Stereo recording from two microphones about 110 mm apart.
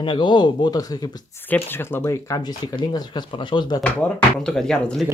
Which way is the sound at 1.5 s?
20° left (ahead or behind).